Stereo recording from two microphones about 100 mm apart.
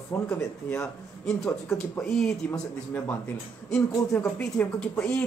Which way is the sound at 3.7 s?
10° left (ahead or behind).